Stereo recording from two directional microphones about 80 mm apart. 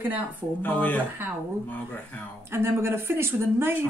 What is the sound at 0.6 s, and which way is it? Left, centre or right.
Speech, left.